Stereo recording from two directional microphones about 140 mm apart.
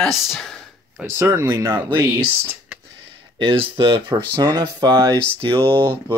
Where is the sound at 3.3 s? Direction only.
35° right (ahead or behind).